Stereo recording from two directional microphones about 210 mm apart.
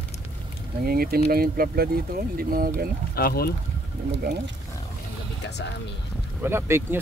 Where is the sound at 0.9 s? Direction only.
45° right (ahead or behind).